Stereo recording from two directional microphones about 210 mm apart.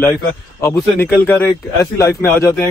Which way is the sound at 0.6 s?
15° left (ahead or behind).